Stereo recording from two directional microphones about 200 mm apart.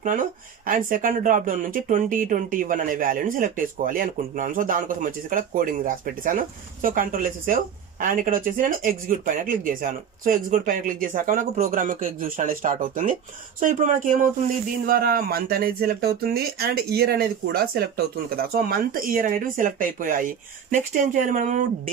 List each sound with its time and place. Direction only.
0.7 s speech: 45° right (ahead or behind)